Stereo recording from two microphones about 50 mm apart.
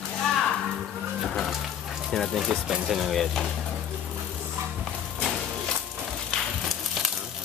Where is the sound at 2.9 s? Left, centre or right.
Centre.